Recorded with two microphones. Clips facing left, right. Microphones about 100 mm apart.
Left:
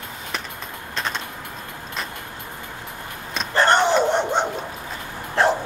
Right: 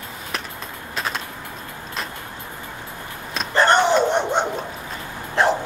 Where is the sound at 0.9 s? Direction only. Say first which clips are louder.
Right 1 dB; 5° right (ahead or behind).